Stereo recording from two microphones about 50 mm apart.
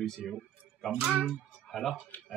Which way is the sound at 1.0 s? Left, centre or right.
Right.